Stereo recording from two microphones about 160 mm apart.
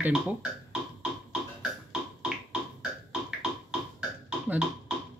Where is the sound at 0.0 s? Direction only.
5° right (ahead or behind).